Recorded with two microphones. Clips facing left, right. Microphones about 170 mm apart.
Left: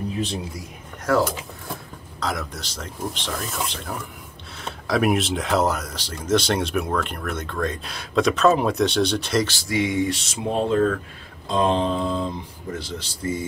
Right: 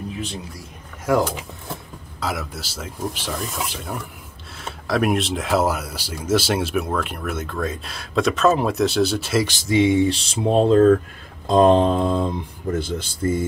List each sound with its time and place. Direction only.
1.1 s speech: 10° right (ahead or behind)
9.5 s speech: 20° right (ahead or behind)
11.4 s mantra: 45° right (ahead or behind)